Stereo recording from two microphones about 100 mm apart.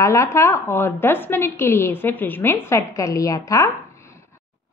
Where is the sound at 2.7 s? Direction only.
30° left (ahead or behind).